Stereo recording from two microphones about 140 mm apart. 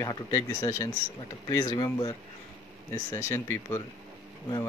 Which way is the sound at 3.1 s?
20° left (ahead or behind).